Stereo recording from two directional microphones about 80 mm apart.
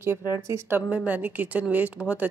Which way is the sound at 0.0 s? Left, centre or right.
Right.